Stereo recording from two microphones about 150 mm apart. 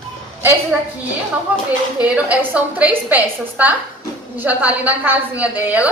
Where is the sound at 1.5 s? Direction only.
10° right (ahead or behind).